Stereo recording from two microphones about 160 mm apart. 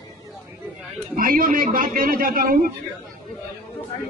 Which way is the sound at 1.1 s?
60° right (ahead or behind).